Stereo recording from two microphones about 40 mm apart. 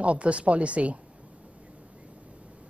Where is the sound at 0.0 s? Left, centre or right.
Right.